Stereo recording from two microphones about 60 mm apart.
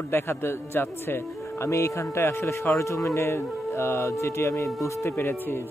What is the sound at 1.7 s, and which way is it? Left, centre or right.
Speech, left.